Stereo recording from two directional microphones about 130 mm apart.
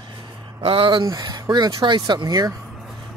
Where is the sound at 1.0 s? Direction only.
30° right (ahead or behind).